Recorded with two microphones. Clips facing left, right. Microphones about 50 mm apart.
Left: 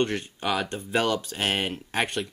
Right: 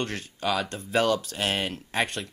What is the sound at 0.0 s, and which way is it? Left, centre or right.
Speech, left.